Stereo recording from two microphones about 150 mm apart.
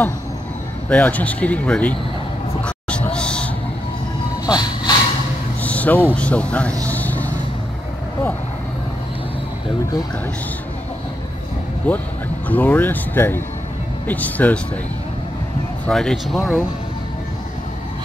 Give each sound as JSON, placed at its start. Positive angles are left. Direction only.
{"t": 0.8, "sound": "speech", "side_deg": 10}
{"t": 2.6, "sound": "a sound", "side_deg": 10}
{"t": 4.5, "sound": "vehicle", "side_deg": 30}
{"t": 5.6, "sound": "vehicle", "side_deg": 10}
{"t": 6.1, "sound": "speech", "side_deg": 10}
{"t": 6.9, "sound": "vehicle", "side_deg": 10}
{"t": 11.9, "sound": "speech", "side_deg": 10}
{"t": 15.9, "sound": "speech", "side_deg": 5}